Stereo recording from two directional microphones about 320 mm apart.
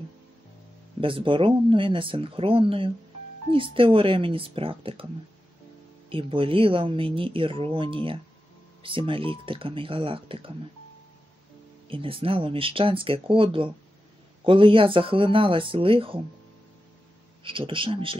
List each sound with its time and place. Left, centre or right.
1.0 s speech: centre
6.0 s speech: centre
11.9 s speech: centre
17.4 s speech: centre